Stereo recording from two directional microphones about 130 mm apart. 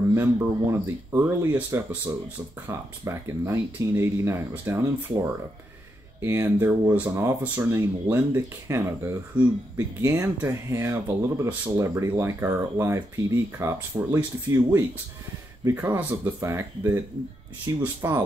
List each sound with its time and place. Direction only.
0.1 s speech: 20° right (ahead or behind)